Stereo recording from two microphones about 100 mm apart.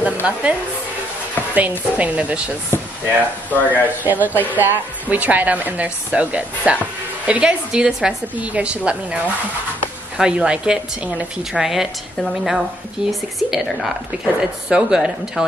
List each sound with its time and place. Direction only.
0.0 s speech: 15° right (ahead or behind)
3.4 s speech: 15° left (ahead or behind)
4.0 s speech: 15° right (ahead or behind)
4.3 s speech: 20° left (ahead or behind)
4.6 s a woman's voice: 15° right (ahead or behind)